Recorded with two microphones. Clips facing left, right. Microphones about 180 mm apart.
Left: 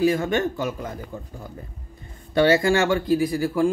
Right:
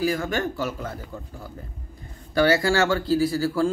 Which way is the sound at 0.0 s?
25° left (ahead or behind).